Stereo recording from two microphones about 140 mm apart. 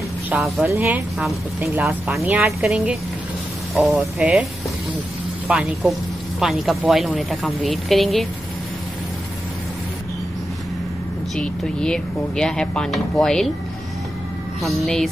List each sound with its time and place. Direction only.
0.3 s speech: 5° right (ahead or behind)
0.7 s speech: 15° right (ahead or behind)
5.5 s speech: centre (ahead or behind)
11.3 s speech: 5° left (ahead or behind)
14.6 s speech: centre (ahead or behind)